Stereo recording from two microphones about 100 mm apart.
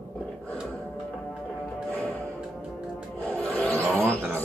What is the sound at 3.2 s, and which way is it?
Rub, 15° left (ahead or behind).